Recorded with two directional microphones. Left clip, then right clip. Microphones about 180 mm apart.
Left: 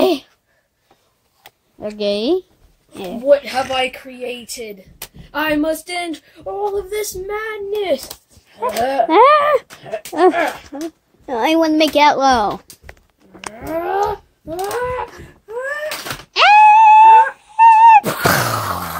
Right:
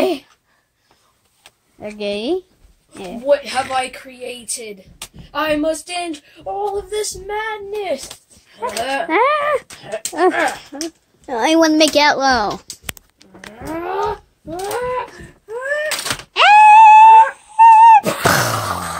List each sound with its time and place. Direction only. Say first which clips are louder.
0.0 s a sound: left 3 dB; 15° left (ahead or behind)
1.8 s a woman's voice: left 4 dB; 15° left (ahead or behind)
5.3 s speech: even; 35° left (ahead or behind)
8.5 s a woman's voice: left 4 dB; 15° left (ahead or behind)
9.2 s speech: left 7 dB; 30° left (ahead or behind)
10.1 s a woman's voice: left 2 dB; 15° left (ahead or behind)
10.7 s speech: even; 5° left (ahead or behind)
13.7 s a sound: left 3 dB; 10° left (ahead or behind)
16.3 s a sound: right 1 dB; centre (ahead or behind)